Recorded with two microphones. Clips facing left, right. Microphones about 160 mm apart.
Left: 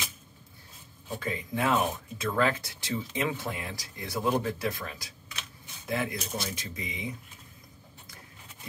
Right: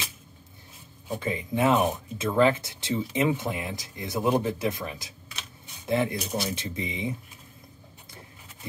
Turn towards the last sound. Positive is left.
turn(degrees=-25)  # may be behind; listen again after turning